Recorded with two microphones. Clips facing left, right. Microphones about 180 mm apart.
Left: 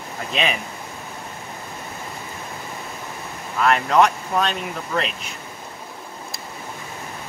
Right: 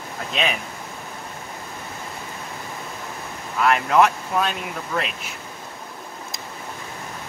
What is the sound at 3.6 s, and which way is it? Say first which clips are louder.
Speech: even; 5° right (ahead or behind).